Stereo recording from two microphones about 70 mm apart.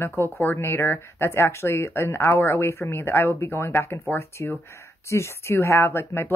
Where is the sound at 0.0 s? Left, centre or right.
Left.